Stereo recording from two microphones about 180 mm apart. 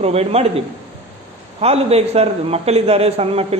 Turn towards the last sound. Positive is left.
turn(degrees=-35)  # may be behind; listen again after turning